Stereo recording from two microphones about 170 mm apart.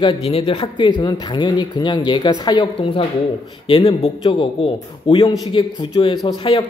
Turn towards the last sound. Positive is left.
turn(degrees=25)  # may be behind; listen again after turning